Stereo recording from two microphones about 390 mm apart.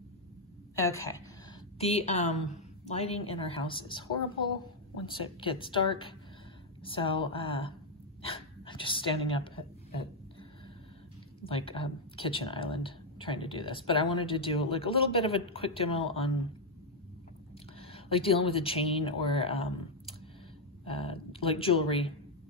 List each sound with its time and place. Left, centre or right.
0.7 s speech: centre
8.2 s a sound: centre
11.4 s speech: centre
17.7 s speech: centre